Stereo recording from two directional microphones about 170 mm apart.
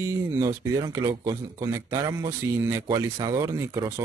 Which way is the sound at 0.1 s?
15° right (ahead or behind).